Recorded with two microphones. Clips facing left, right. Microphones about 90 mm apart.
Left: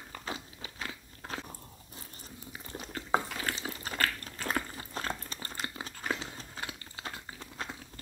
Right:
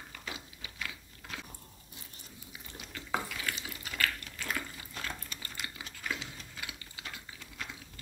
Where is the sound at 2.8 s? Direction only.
35° left (ahead or behind).